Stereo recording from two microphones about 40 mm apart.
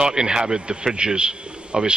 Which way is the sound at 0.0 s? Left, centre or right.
Right.